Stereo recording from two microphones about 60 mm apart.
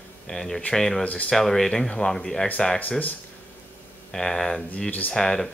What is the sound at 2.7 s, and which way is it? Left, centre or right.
Speech, left.